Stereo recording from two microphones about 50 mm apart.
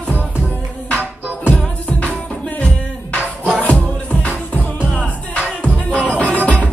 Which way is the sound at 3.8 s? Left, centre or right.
Left.